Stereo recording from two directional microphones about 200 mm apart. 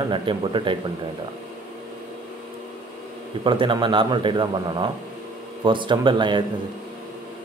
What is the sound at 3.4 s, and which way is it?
Speech, 25° right (ahead or behind).